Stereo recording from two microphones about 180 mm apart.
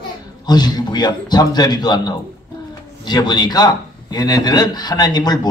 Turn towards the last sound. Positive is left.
turn(degrees=20)  # may be behind; listen again after turning